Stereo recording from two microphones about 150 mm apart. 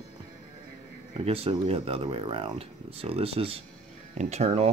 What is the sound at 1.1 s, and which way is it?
Speech, 40° right (ahead or behind).